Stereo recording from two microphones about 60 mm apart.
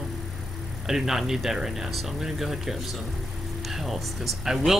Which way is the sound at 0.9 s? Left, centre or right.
Centre.